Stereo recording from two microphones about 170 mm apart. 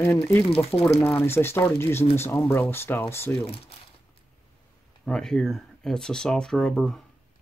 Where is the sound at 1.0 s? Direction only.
15° left (ahead or behind).